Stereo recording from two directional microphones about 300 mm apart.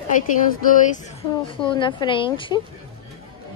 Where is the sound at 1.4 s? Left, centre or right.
Centre.